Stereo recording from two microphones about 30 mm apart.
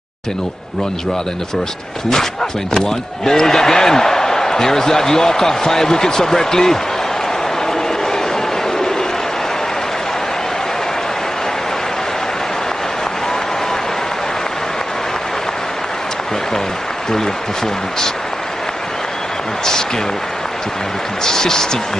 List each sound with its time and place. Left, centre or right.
2.7 s speech: centre
21.2 s speech: centre